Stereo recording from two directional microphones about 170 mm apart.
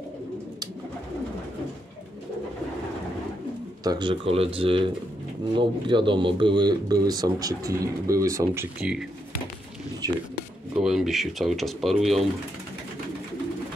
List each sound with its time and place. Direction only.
3.8 s speech: 25° right (ahead or behind)
10.7 s speech: centre (ahead or behind)